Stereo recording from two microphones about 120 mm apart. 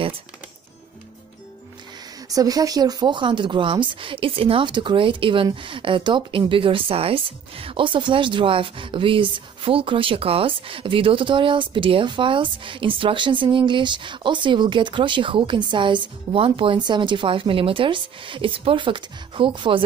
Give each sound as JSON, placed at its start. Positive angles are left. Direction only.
{"t": 2.2, "sound": "speech", "side_deg": -30}